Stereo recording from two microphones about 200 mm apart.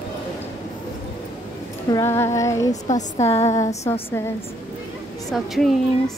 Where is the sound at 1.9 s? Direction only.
15° left (ahead or behind).